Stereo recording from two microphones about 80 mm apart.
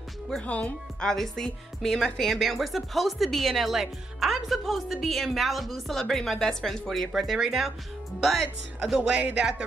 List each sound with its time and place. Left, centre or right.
0.4 s speech: centre
1.1 s speech: centre
7.1 s speech: centre
9.1 s speech: centre